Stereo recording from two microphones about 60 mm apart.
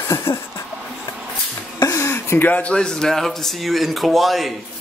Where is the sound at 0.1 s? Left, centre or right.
Left.